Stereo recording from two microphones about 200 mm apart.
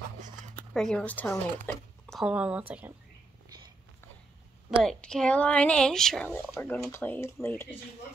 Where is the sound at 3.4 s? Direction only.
20° right (ahead or behind).